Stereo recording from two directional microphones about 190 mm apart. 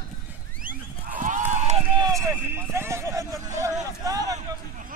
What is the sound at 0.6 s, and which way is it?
Sheep, 45° right (ahead or behind).